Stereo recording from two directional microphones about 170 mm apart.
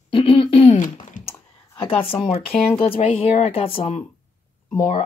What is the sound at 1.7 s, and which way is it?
Speech, 30° left (ahead or behind).